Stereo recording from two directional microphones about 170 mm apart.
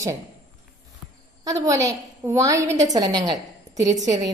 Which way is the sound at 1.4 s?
20° right (ahead or behind).